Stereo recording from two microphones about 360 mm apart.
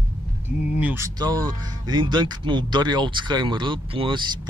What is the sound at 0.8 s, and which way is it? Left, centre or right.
Speech, centre.